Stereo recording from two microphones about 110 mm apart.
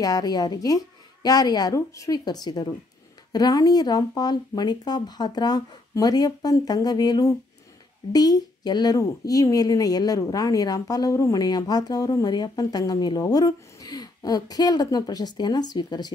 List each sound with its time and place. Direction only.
0.0 s a woman's voice: 35° left (ahead or behind)